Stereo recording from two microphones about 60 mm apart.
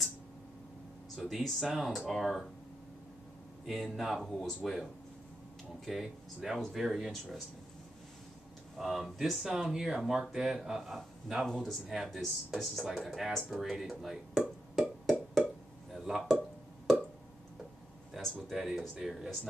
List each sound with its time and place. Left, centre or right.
1.1 s speech: centre
3.6 s speech: centre
5.9 s speech: centre
8.7 s speech: centre
11.4 s speech: centre
14.8 s music: centre
15.9 s a sound: centre
18.3 s speech: centre